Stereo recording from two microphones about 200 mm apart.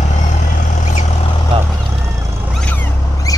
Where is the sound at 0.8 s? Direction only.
40° left (ahead or behind).